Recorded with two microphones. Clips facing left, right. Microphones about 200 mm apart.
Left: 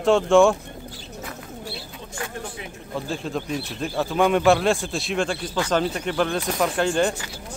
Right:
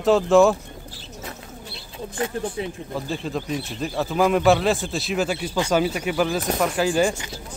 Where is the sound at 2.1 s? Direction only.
20° right (ahead or behind).